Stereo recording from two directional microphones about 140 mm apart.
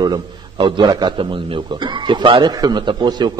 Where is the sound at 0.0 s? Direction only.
35° right (ahead or behind).